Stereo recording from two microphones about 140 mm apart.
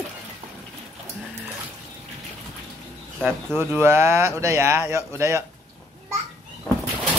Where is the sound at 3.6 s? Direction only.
15° right (ahead or behind).